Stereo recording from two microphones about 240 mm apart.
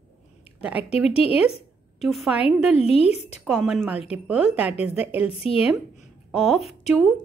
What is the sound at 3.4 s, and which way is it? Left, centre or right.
A woman's voice, centre.